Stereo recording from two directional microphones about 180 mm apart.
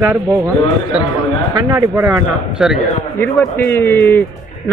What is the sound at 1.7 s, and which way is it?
Speech, 20° right (ahead or behind).